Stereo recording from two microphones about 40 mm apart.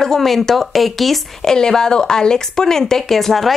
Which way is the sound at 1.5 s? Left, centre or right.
Centre.